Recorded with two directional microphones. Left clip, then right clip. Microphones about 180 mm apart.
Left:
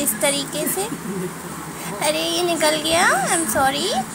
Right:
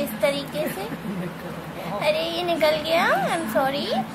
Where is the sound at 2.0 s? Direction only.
20° left (ahead or behind).